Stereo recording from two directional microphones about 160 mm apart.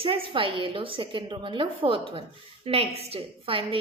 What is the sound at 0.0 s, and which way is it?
A woman's voice, 35° right (ahead or behind).